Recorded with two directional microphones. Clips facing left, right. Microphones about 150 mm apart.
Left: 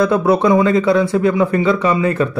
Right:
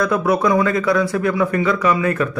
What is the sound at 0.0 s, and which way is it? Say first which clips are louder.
Speech: left 4 dB; 25° left (ahead or behind).